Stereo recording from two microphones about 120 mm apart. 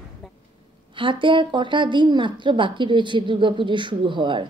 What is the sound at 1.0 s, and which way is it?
A woman's voice, 45° right (ahead or behind).